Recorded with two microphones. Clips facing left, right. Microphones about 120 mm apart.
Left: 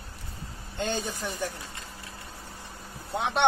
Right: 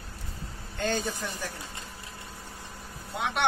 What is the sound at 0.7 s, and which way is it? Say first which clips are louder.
Speech: right 1 dB; 20° left (ahead or behind).